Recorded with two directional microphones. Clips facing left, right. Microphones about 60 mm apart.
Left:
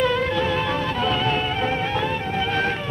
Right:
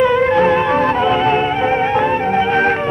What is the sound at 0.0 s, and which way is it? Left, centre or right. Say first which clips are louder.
Music: right 8 dB; right.